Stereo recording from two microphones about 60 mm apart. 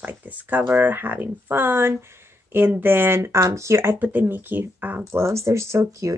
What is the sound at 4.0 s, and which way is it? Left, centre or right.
Speech, right.